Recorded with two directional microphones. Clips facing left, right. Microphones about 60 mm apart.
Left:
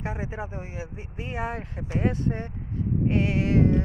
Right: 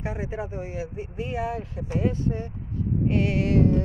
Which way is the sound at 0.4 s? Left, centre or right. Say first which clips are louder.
Right 3 dB; left.